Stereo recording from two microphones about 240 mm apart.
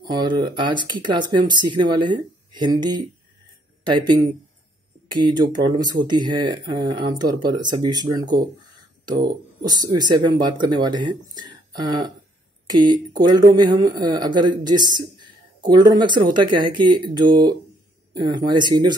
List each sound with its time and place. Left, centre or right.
0.0 s speech: centre
3.8 s speech: centre
5.2 s speech: centre
9.7 s speech: centre